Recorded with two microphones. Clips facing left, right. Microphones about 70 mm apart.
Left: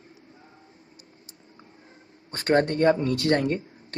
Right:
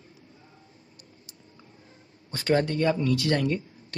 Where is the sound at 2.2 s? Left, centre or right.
Left.